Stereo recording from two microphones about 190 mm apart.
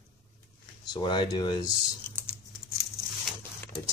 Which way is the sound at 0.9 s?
25° left (ahead or behind).